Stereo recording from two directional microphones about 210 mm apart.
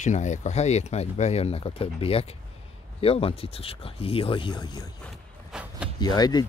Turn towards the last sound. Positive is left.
turn(degrees=20)  # may be behind; listen again after turning